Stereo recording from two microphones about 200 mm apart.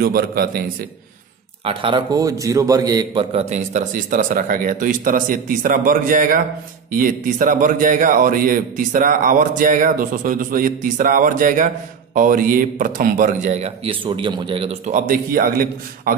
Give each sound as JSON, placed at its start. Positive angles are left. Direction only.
{"t": 0.0, "sound": "speech", "side_deg": -50}
{"t": 1.6, "sound": "a man's voice", "side_deg": -25}
{"t": 3.3, "sound": "a man's voice", "side_deg": -35}